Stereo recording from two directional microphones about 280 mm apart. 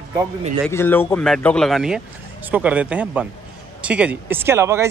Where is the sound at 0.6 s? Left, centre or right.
Centre.